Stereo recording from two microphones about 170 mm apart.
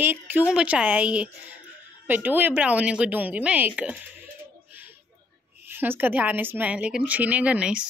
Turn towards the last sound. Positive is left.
turn(degrees=-5)  # may be behind; listen again after turning